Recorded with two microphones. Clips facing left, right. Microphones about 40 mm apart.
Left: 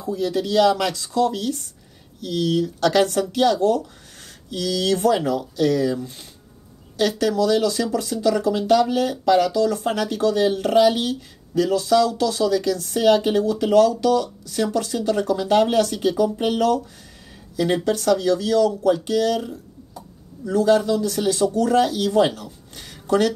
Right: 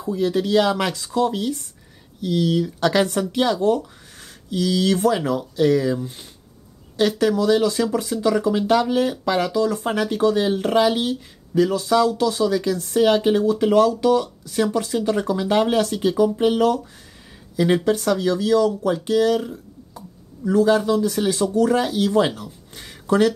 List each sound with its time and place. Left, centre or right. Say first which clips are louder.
0.0 s speech: right 2 dB; right
17.8 s speech: left 1 dB; right